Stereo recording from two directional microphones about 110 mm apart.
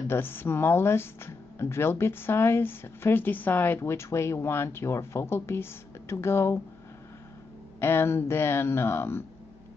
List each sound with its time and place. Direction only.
0.1 s speech: 20° left (ahead or behind)
7.8 s speech: 20° left (ahead or behind)